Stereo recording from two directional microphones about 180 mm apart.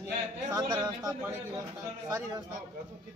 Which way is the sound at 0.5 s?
20° right (ahead or behind).